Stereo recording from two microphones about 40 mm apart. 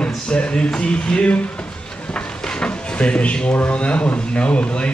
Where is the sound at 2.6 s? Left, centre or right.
Left.